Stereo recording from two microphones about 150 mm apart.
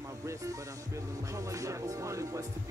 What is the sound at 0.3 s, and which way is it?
Music, 20° right (ahead or behind).